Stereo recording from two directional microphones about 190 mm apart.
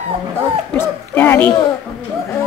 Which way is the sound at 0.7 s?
10° left (ahead or behind).